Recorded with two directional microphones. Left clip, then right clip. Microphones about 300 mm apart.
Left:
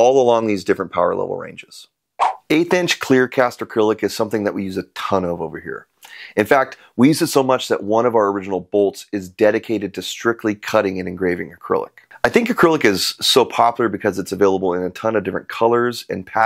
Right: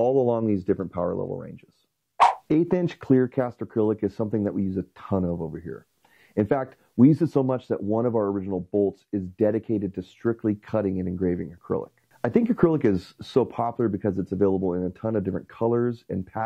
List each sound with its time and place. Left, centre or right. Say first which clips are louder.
0.3 s speech: left 8 dB; centre
8.5 s speech: left 7 dB; left
9.1 s speech: left 8 dB; centre